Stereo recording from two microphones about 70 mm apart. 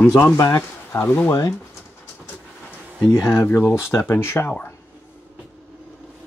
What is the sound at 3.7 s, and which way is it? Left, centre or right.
Speech, left.